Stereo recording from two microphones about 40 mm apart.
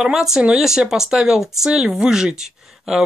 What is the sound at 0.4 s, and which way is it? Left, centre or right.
Speech, right.